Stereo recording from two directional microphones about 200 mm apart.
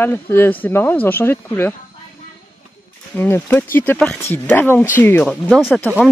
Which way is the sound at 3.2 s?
10° left (ahead or behind).